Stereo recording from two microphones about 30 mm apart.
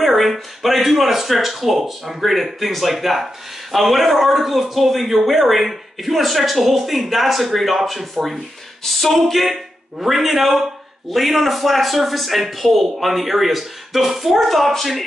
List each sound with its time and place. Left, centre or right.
0.0 s speech: centre
8.8 s a sound: centre
9.2 s speech: centre